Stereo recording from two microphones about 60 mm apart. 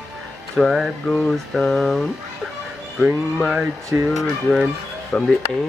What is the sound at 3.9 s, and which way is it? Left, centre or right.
Speech, right.